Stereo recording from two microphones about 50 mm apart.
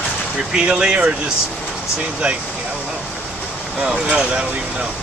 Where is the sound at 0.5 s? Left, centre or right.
Centre.